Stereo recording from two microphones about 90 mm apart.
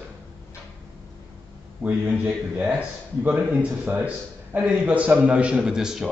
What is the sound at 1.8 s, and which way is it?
Speech, 15° right (ahead or behind).